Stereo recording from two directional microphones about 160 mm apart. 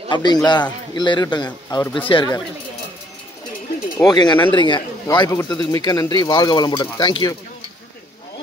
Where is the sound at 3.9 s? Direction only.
25° left (ahead or behind).